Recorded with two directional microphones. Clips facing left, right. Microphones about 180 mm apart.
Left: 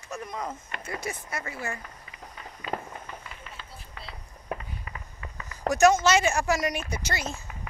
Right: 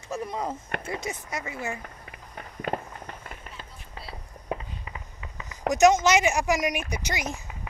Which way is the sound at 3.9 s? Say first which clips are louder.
Right 4 dB; 30° right (ahead or behind).